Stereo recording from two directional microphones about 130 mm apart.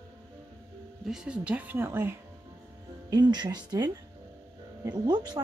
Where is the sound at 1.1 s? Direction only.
5° right (ahead or behind).